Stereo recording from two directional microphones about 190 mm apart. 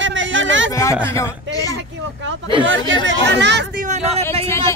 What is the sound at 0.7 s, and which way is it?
Speech, 15° left (ahead or behind).